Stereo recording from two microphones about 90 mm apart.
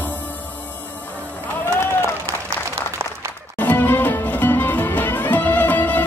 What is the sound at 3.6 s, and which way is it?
Music, 20° left (ahead or behind).